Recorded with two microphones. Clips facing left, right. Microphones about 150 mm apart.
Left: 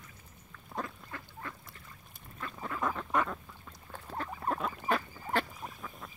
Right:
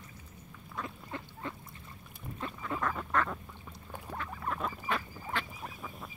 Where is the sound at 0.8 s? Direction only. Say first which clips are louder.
Right 3 dB; 20° right (ahead or behind).